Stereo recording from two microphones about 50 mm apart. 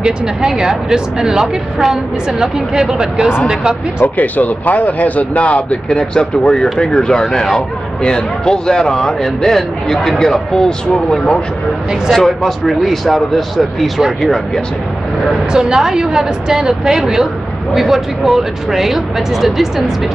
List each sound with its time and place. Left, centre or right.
0.0 s a woman's voice: centre
4.0 s speech: left; by 14.6 s centre
15.5 s a woman's voice: centre